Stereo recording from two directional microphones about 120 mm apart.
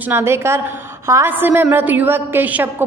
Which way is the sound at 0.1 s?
20° right (ahead or behind).